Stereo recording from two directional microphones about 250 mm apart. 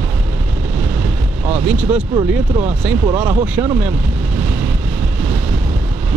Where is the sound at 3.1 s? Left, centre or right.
Centre.